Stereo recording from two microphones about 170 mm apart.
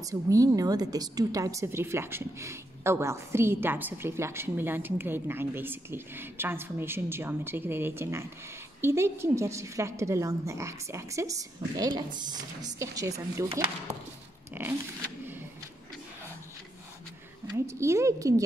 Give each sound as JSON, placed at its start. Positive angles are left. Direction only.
{"t": 0.0, "sound": "a woman's voice", "side_deg": -20}
{"t": 14.5, "sound": "a sound", "side_deg": -10}
{"t": 17.6, "sound": "a woman's voice", "side_deg": -15}